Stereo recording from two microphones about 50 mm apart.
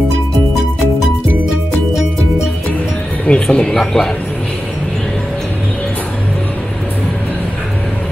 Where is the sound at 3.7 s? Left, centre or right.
Centre.